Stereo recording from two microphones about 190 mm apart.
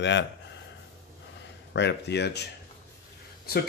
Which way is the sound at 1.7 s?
65° left (ahead or behind).